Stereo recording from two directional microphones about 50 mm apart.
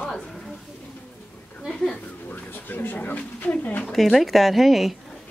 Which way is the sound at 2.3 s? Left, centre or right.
Left.